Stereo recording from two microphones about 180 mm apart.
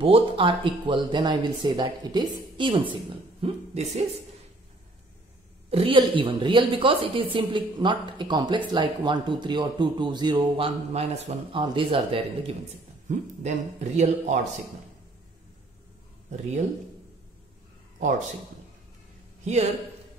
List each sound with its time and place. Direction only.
0.0 s a woman's voice: 30° right (ahead or behind)
5.7 s a woman's voice: 30° right (ahead or behind)
13.1 s speech: 40° right (ahead or behind)